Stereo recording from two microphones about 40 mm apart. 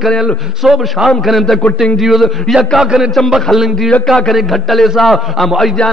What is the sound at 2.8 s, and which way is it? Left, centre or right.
Speech, centre.